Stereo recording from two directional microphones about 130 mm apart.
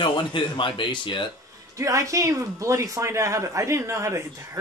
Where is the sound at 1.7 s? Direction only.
25° right (ahead or behind).